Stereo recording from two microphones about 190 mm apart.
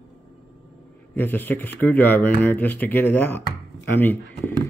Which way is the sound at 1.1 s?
10° left (ahead or behind).